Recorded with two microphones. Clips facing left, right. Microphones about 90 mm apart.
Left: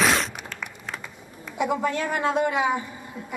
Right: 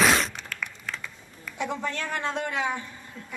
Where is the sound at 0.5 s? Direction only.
25° left (ahead or behind).